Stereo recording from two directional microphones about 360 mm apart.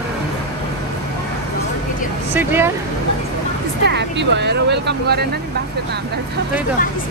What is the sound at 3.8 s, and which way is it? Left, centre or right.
Speech, right.